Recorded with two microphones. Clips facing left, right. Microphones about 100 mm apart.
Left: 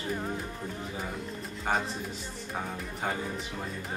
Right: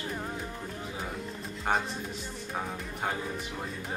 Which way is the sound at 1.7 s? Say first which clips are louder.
Even; centre (ahead or behind).